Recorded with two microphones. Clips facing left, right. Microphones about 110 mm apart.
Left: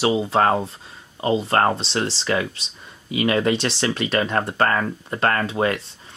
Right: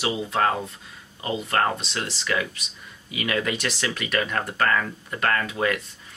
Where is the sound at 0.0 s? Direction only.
30° left (ahead or behind).